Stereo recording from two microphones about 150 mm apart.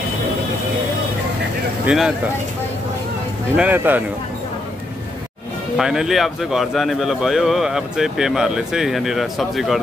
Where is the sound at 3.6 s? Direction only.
10° right (ahead or behind).